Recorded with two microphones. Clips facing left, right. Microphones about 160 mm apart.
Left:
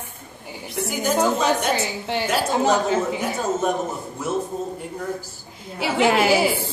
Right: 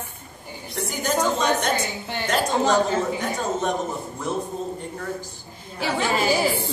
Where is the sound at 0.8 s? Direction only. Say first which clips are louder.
Left 3 dB; 10° left (ahead or behind).